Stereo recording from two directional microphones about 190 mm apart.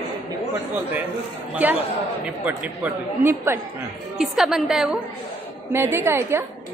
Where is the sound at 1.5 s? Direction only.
10° right (ahead or behind).